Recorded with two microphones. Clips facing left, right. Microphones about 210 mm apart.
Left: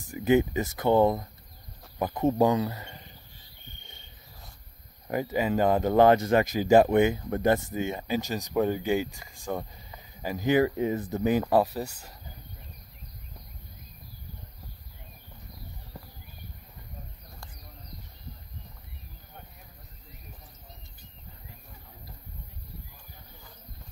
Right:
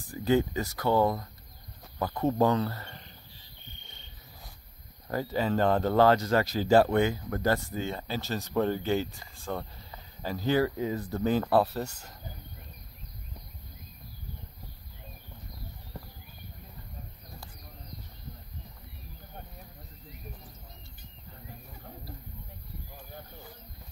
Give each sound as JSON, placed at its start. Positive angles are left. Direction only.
{"t": 0.1, "sound": "speech", "side_deg": 15}
{"t": 5.0, "sound": "speech", "side_deg": 15}